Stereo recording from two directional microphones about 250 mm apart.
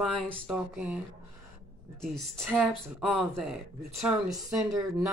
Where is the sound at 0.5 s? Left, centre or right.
Centre.